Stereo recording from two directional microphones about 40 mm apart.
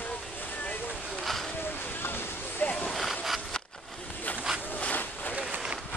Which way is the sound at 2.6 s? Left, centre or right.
Left.